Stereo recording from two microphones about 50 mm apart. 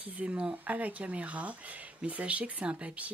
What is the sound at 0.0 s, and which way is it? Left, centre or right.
Speech, right.